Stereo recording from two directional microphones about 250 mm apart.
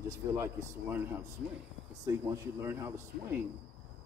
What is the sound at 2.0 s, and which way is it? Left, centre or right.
Speech, centre.